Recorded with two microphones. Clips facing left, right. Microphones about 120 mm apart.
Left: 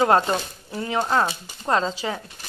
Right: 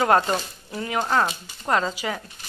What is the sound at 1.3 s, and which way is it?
Speech, 25° left (ahead or behind).